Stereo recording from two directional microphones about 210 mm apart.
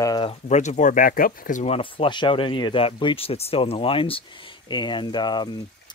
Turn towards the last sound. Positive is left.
turn(degrees=20)  # may be behind; listen again after turning